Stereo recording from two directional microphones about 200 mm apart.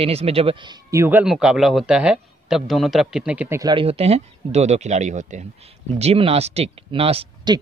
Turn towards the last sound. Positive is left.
turn(degrees=-30)  # may be behind; listen again after turning